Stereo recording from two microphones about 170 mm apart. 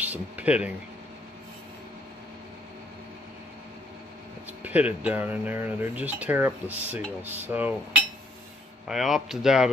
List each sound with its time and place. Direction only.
0.0 s speech: 10° right (ahead or behind)
4.6 s speech: 10° right (ahead or behind)
8.8 s speech: 5° right (ahead or behind)